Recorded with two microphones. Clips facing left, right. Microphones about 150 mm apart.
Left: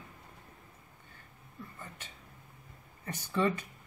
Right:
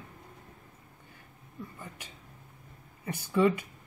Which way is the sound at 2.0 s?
10° right (ahead or behind).